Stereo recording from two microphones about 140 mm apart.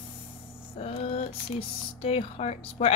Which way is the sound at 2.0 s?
45° left (ahead or behind).